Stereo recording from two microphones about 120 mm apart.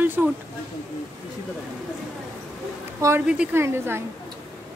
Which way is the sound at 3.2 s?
10° right (ahead or behind).